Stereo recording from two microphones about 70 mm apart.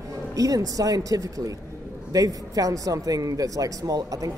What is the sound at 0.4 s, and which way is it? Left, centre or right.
Speech, right.